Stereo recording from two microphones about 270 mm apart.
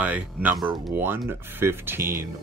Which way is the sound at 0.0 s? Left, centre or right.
Centre.